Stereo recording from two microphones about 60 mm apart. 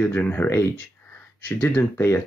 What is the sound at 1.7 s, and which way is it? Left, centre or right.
Speech, left.